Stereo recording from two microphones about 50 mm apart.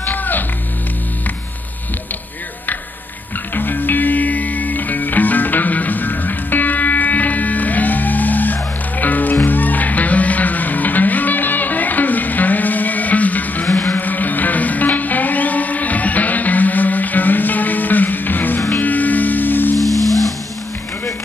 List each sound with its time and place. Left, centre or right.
0.0 s music: left
3.5 s music: left